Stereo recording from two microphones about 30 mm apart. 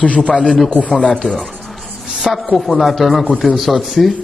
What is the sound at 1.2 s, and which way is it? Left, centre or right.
Speech, centre.